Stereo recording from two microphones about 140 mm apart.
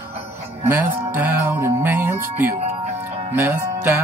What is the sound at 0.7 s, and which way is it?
Speech, 15° right (ahead or behind).